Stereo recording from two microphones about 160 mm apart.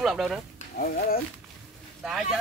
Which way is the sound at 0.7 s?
65° left (ahead or behind).